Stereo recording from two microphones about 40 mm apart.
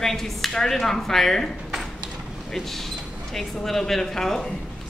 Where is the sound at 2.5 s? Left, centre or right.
Centre.